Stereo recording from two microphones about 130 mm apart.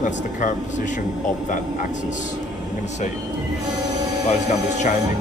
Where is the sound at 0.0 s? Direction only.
70° left (ahead or behind).